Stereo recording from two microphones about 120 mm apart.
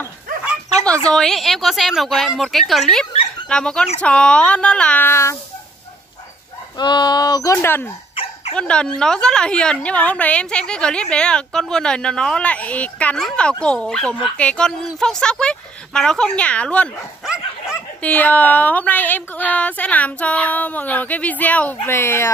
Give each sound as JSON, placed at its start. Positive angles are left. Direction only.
{"t": 1.0, "sound": "a woman's voice", "side_deg": 5}
{"t": 6.8, "sound": "speech", "side_deg": 40}
{"t": 8.5, "sound": "a woman's voice", "side_deg": 5}
{"t": 17.2, "sound": "dog", "side_deg": -5}
{"t": 18.0, "sound": "a woman's voice", "side_deg": 15}